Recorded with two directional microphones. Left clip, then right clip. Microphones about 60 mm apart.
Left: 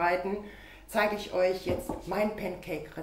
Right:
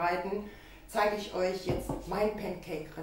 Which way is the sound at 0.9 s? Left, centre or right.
Left.